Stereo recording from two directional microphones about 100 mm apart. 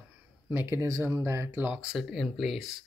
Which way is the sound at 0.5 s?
25° right (ahead or behind).